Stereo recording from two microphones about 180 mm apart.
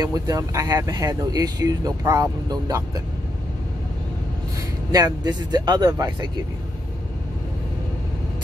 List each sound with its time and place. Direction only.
0.0 s speech: 20° right (ahead or behind)
4.9 s speech: 20° right (ahead or behind)